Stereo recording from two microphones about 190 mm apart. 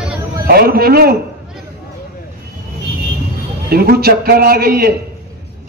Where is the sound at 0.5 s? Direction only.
55° right (ahead or behind).